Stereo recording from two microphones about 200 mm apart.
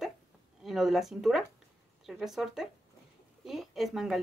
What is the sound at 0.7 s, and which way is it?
A woman's voice, centre (ahead or behind).